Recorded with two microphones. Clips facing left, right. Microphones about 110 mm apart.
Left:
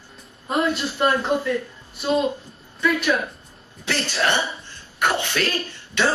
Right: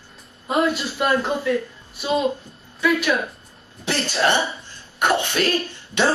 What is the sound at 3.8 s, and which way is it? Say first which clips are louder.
Speech: right 2 dB; 25° right (ahead or behind).